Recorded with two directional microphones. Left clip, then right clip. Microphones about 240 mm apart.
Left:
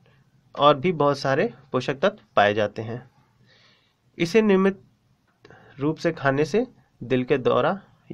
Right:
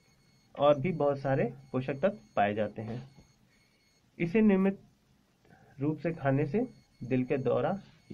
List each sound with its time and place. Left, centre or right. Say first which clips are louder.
0.6 s speech: left 8 dB; left
4.2 s speech: left 9 dB; left
5.8 s speech: left 9 dB; left